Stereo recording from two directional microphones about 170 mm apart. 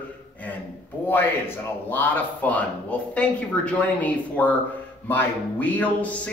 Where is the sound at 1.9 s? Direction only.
10° left (ahead or behind).